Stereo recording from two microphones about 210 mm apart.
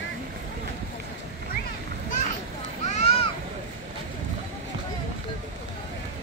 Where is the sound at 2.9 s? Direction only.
30° left (ahead or behind).